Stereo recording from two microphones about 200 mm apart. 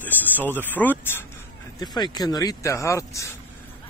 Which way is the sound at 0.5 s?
10° left (ahead or behind).